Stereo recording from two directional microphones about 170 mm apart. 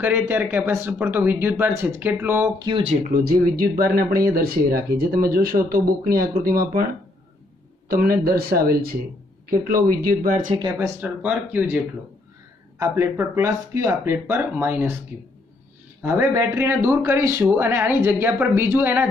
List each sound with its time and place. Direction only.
0.0 s speech: 10° right (ahead or behind)
2.8 s speech: 40° right (ahead or behind)
3.1 s speech: 60° right (ahead or behind)
7.9 s speech: 60° right (ahead or behind)
10.5 s speech: 25° right (ahead or behind)
11.0 s speech: 10° right (ahead or behind)
16.0 s speech: 15° right (ahead or behind)